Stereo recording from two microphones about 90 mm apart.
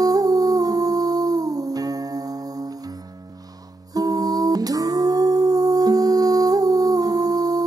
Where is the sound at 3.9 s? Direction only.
45° right (ahead or behind).